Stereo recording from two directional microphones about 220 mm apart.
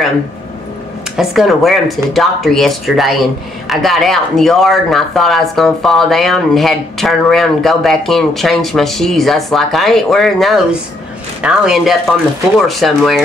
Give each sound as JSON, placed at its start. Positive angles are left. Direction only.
{"t": 1.1, "sound": "speech", "side_deg": 0}